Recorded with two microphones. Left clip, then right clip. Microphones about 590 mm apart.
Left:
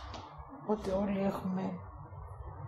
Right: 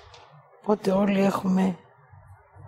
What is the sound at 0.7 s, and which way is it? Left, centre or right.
Speech, right.